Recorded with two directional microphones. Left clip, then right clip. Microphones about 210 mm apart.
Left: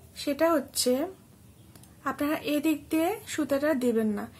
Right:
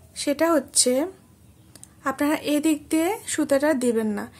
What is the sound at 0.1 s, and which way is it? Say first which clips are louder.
Speech: right 4 dB; 30° right (ahead or behind).